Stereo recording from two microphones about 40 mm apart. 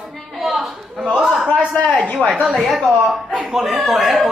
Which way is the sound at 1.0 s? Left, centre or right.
Centre.